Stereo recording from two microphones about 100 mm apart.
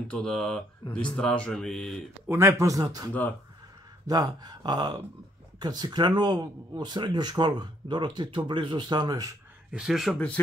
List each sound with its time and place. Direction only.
0.1 s speech: 5° left (ahead or behind)
2.2 s speech: 25° right (ahead or behind)
3.1 s speech: 15° left (ahead or behind)
4.1 s speech: 40° right (ahead or behind)
9.7 s speech: 5° right (ahead or behind)
10.1 s speech: 15° left (ahead or behind)